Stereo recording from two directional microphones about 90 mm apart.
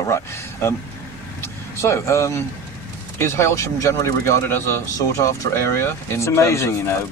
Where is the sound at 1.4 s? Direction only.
30° left (ahead or behind).